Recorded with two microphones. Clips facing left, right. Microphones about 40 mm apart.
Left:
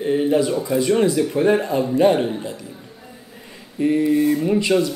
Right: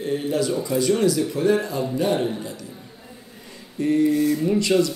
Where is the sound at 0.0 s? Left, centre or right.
Left.